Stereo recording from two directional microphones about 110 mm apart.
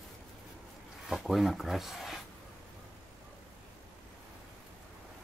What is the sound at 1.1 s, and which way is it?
Speech, centre (ahead or behind).